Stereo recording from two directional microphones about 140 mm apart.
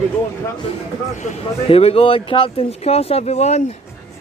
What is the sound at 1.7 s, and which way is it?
Speech, 45° left (ahead or behind).